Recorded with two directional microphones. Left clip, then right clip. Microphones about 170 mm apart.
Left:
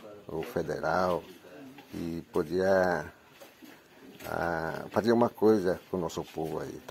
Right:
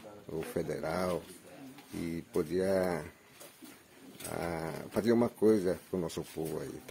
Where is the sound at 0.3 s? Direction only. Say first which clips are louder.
Left 3 dB; centre (ahead or behind).